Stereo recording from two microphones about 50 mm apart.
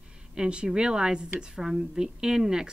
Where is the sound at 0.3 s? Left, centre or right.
Centre.